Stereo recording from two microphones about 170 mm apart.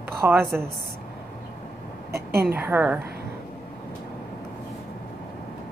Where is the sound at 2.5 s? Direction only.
10° right (ahead or behind).